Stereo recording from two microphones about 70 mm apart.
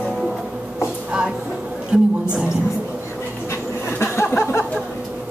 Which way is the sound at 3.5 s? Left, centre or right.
Left.